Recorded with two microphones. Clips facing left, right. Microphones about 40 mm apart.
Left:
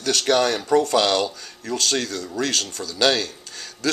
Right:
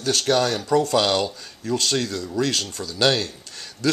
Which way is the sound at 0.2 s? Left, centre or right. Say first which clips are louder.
Left 2 dB; left.